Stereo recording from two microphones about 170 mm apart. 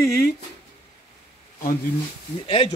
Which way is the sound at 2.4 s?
30° left (ahead or behind).